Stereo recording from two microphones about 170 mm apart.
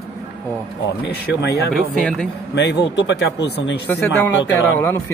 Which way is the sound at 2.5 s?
80° left.